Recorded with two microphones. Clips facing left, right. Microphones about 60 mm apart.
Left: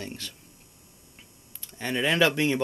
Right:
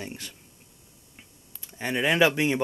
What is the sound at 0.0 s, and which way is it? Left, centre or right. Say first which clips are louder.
Speech: even; centre.